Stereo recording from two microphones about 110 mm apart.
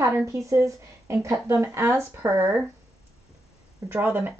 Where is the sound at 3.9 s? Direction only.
15° right (ahead or behind).